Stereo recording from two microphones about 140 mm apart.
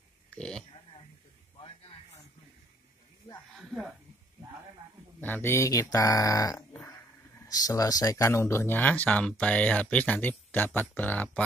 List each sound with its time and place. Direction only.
0.3 s a sound: 5° left (ahead or behind)
3.5 s speech: centre (ahead or behind)
5.2 s speech: 15° left (ahead or behind)